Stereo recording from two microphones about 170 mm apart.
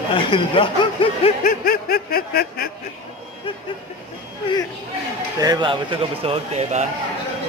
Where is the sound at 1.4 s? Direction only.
55° left (ahead or behind).